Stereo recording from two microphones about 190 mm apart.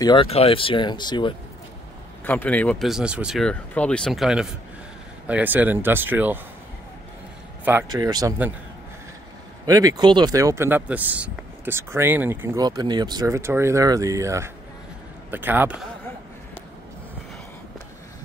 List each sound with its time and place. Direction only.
0.0 s speech: 25° left (ahead or behind)
2.2 s speech: 10° left (ahead or behind); by 6.4 s 10° right (ahead or behind)
7.9 s speech: 20° right (ahead or behind)
9.7 s speech: 20° right (ahead or behind)